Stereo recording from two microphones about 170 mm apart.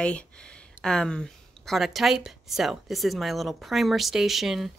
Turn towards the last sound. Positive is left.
turn(degrees=0)  # may be behind; listen again after turning